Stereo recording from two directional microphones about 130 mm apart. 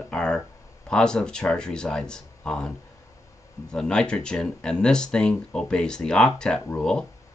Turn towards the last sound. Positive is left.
turn(degrees=5)  # may be behind; listen again after turning